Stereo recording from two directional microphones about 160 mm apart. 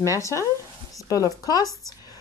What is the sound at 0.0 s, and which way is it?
Speech, 20° left (ahead or behind).